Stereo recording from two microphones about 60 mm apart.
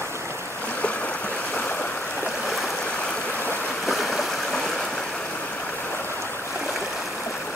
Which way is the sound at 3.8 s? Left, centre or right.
Centre.